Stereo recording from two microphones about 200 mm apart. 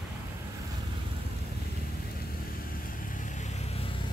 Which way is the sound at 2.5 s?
45° left (ahead or behind).